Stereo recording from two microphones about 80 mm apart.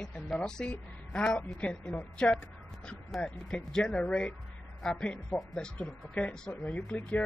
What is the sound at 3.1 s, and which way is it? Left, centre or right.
Speech, centre.